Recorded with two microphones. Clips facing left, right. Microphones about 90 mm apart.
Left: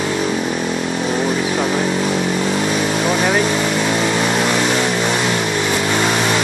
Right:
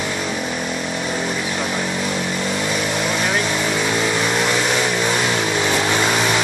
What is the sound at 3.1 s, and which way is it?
Vehicle, 15° left (ahead or behind).